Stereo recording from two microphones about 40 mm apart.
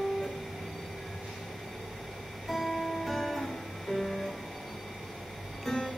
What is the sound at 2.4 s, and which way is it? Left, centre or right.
Music, centre.